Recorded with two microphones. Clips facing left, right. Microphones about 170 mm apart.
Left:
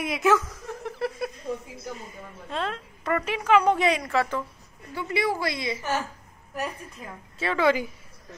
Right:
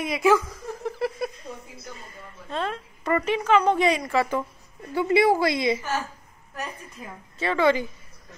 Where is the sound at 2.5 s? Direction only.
5° right (ahead or behind).